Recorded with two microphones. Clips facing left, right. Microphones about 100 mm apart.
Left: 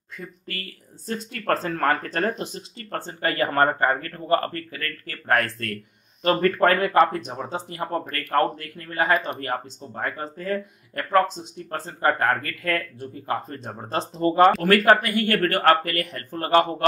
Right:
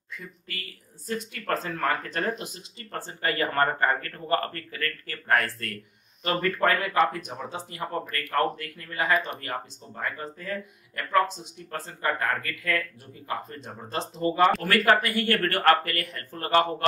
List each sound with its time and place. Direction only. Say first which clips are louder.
1.0 s speech: left 5 dB; 35° left (ahead or behind)
5.3 s speech: left 3 dB; 50° left (ahead or behind)
7.2 s speech: left 5 dB; 30° left (ahead or behind)
12.0 s speech: left 6 dB; 45° left (ahead or behind)
15.4 s speech: left 2 dB; 20° left (ahead or behind)